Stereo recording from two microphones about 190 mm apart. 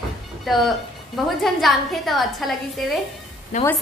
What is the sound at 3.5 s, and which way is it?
Speech, 40° left (ahead or behind).